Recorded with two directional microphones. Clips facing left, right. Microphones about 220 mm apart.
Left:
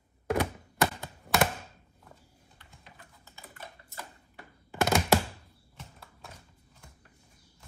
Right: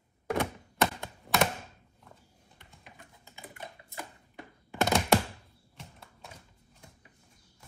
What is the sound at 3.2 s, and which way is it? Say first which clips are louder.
Typing: right 3 dB; 15° right (ahead or behind).